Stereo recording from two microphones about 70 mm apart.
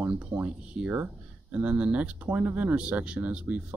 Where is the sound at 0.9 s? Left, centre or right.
Right.